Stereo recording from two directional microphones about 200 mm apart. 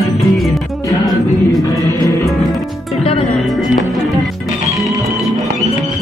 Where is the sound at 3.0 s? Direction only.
30° left (ahead or behind).